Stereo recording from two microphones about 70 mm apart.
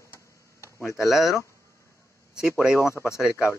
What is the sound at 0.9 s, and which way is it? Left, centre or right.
Speech, centre.